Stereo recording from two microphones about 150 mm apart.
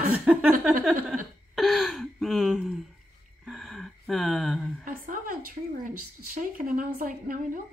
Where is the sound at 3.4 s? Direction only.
Centre (ahead or behind).